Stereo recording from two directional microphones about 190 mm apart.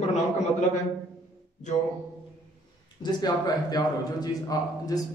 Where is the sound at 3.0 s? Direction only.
20° left (ahead or behind).